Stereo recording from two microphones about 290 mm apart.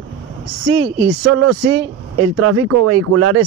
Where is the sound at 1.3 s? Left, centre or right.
Right.